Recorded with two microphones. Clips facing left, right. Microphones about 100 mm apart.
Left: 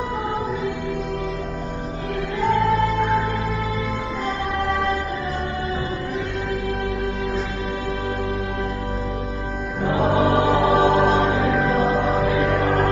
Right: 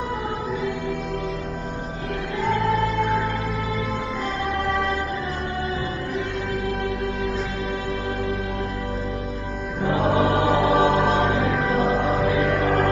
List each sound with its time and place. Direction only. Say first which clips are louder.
10.1 s music: left 2 dB; 20° left (ahead or behind)
11.4 s music: left 2 dB; 35° left (ahead or behind)